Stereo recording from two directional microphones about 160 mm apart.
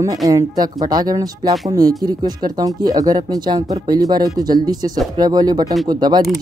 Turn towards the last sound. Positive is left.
turn(degrees=-25)  # may be behind; listen again after turning